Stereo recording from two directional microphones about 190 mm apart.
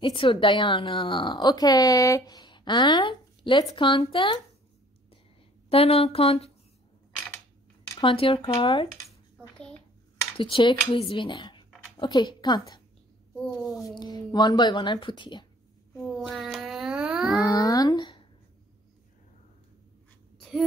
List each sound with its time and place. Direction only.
0.0 s a woman's voice: 25° left (ahead or behind)
5.7 s speech: 30° left (ahead or behind)
7.9 s a woman's voice: 25° left (ahead or behind)
10.3 s a woman's voice: 25° left (ahead or behind)
16.0 s a sound: centre (ahead or behind)
17.5 s a sound: 20° left (ahead or behind)